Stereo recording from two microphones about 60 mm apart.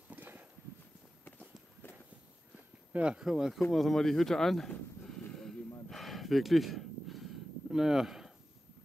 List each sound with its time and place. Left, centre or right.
0.1 s clip-clop: right
2.9 s speech: right
3.2 s speech: centre
3.7 s speech: centre
5.3 s a sound: centre
5.9 s gasp: centre
7.7 s speech: centre